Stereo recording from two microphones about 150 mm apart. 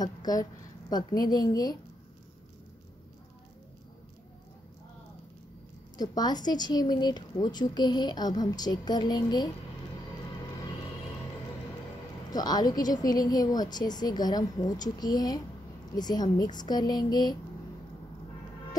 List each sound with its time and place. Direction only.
0.0 s a woman's voice: 25° left (ahead or behind)
5.9 s a woman's voice: 25° left (ahead or behind)
12.3 s a woman's voice: 25° left (ahead or behind)